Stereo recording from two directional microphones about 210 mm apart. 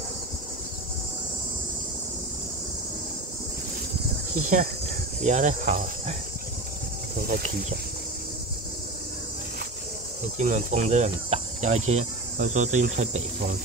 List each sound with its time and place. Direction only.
4.4 s cricket: 35° right (ahead or behind)
10.3 s cricket: 35° right (ahead or behind)